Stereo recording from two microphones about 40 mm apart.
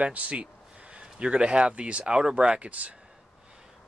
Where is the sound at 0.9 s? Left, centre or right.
Right.